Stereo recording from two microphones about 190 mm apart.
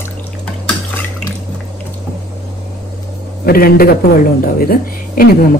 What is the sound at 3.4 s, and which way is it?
A woman's voice, 50° left (ahead or behind).